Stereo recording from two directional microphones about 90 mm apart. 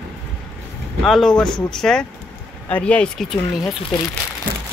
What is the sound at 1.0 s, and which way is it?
Speech, 5° left (ahead or behind).